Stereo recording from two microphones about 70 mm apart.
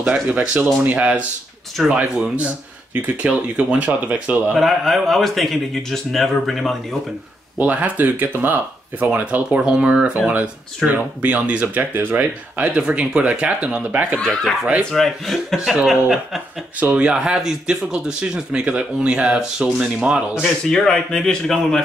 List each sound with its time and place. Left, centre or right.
0.0 s speech: centre
4.6 s a man's voice: centre
7.5 s speech: right
12.7 s speech: centre
14.2 s a man's voice: centre
15.6 s speech: centre
16.8 s speech: centre
20.7 s speech: centre